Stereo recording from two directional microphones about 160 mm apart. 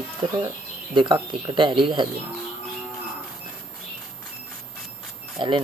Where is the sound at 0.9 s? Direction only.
30° right (ahead or behind).